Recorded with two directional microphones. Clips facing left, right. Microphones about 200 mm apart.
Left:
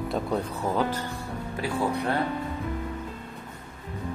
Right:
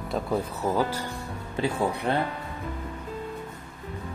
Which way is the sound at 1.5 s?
20° right (ahead or behind).